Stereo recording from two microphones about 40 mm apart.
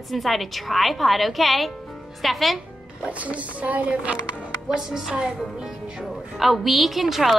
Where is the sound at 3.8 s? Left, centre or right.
Right.